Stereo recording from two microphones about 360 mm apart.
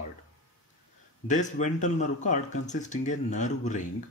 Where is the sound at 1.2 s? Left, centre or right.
Left.